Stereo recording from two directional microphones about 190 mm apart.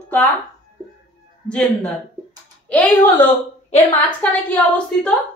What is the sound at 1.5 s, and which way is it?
A woman's voice, 5° left (ahead or behind).